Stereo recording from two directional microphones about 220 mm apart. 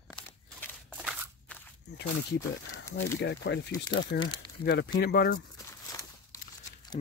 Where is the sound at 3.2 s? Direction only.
55° left (ahead or behind).